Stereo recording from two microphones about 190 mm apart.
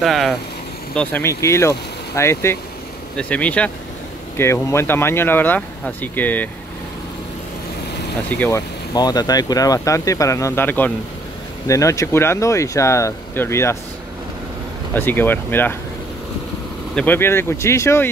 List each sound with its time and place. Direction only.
0.0 s speech: centre (ahead or behind)
0.9 s speech: 10° left (ahead or behind)
8.3 s speech: 10° left (ahead or behind)
15.0 s speech: 10° left (ahead or behind)
16.9 s speech: 10° left (ahead or behind)